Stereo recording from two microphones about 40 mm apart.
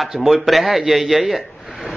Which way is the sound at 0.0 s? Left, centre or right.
Centre.